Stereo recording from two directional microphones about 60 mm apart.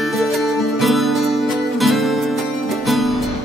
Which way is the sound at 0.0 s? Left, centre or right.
Centre.